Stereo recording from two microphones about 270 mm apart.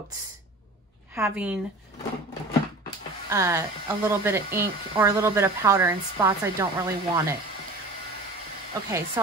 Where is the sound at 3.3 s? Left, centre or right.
Centre.